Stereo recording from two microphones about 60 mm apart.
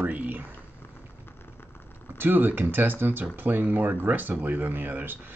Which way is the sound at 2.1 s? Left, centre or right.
Right.